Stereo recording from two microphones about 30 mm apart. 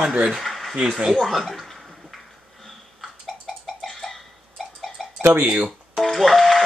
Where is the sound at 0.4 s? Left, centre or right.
Centre.